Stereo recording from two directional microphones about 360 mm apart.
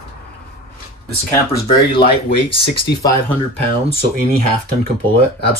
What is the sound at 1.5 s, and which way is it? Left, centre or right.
Speech, centre.